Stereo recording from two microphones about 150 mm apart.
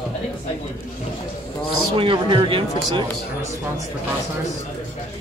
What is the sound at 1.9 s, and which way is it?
Speech, 35° right (ahead or behind).